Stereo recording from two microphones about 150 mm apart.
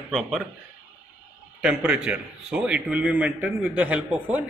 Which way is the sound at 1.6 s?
5° right (ahead or behind).